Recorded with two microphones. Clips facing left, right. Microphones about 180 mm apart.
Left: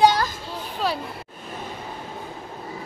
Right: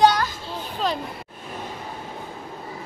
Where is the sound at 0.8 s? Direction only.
10° left (ahead or behind).